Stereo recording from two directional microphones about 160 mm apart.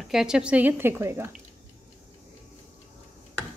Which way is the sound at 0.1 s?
5° right (ahead or behind).